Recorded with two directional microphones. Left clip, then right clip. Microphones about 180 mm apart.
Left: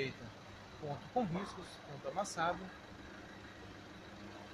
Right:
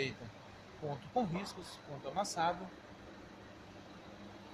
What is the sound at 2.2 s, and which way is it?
Speech, 10° right (ahead or behind).